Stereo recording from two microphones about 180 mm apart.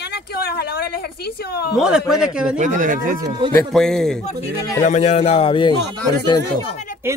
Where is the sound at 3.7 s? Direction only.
5° left (ahead or behind).